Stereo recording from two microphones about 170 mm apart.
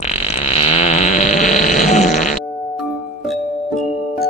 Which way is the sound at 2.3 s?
Centre (ahead or behind).